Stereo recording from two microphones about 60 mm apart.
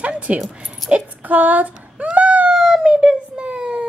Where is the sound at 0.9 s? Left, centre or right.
Right.